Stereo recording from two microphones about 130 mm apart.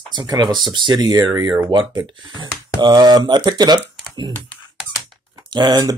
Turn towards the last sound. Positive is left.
turn(degrees=-30)  # may be behind; listen again after turning